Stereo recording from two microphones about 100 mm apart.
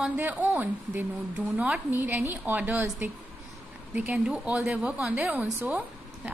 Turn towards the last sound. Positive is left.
turn(degrees=-15)  # may be behind; listen again after turning